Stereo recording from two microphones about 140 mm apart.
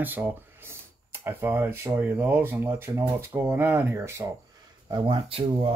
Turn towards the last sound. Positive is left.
turn(degrees=-45)  # may be behind; listen again after turning